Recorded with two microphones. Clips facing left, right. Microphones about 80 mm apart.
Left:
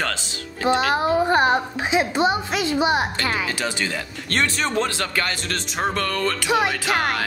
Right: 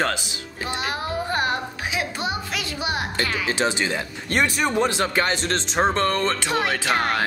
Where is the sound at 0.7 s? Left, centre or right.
Left.